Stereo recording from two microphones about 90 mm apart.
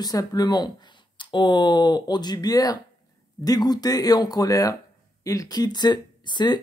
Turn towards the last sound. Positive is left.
turn(degrees=55)  # may be behind; listen again after turning